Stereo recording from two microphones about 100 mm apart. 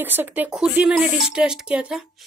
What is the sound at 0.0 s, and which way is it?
Speech, 20° right (ahead or behind).